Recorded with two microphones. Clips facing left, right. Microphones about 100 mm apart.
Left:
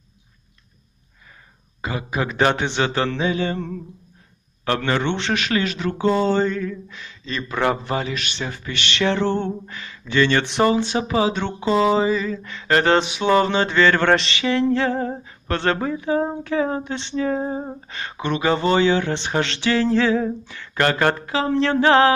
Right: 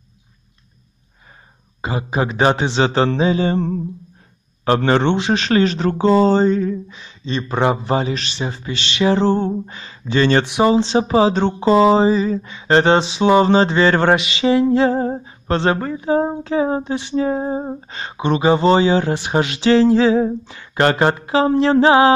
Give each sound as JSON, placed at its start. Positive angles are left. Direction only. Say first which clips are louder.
{"t": 1.8, "sound": "speech", "louder": "right 4 dB", "side_deg": -25}
{"t": 5.1, "sound": "speech", "louder": "right 5 dB", "side_deg": -20}
{"t": 5.4, "sound": "speech", "louder": "right 6 dB", "side_deg": -35}
{"t": 9.7, "sound": "speech", "louder": "right 5 dB", "side_deg": -25}
{"t": 10.4, "sound": "speech", "louder": "right 3 dB", "side_deg": -10}
{"t": 10.7, "sound": "speech", "louder": "right 5 dB", "side_deg": -25}
{"t": 14.3, "sound": "a sound", "louder": "right 5 dB", "side_deg": -15}
{"t": 16.0, "sound": "speech", "louder": "right 4 dB", "side_deg": -25}